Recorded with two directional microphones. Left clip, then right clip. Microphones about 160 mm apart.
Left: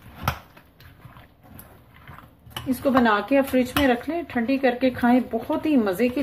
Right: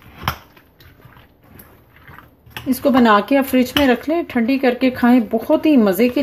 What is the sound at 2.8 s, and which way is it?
Speech, 55° right (ahead or behind).